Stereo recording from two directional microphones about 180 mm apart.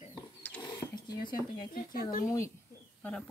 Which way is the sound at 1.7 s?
50° left (ahead or behind).